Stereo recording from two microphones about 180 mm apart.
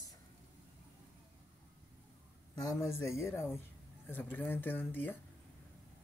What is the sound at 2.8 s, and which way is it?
Speech, 15° left (ahead or behind).